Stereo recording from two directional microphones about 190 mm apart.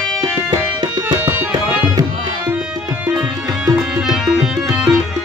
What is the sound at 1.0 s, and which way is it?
Tabla, 10° right (ahead or behind).